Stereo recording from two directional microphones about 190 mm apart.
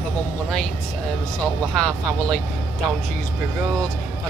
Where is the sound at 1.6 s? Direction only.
5° left (ahead or behind).